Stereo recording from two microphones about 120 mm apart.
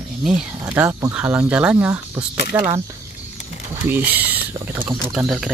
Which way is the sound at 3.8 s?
15° right (ahead or behind).